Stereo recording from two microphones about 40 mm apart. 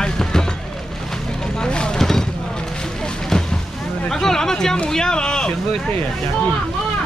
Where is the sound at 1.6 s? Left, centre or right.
Left.